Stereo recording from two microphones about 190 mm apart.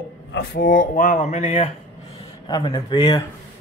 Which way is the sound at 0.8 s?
40° left (ahead or behind).